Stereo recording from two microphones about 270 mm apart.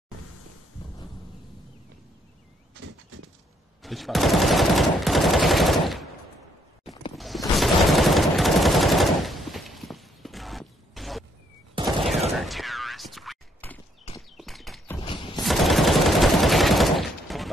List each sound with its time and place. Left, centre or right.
3.8 s machine gun: centre
7.2 s gunshot: centre
11.8 s fusillade: centre
12.4 s a sound: centre
14.3 s clip-clop: centre
15.0 s fusillade: centre
15.4 s gunshot: centre